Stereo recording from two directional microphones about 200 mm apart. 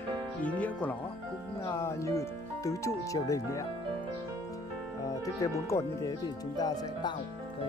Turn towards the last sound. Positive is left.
turn(degrees=20)  # may be behind; listen again after turning